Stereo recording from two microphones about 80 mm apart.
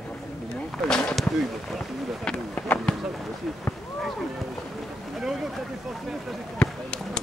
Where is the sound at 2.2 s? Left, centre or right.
Centre.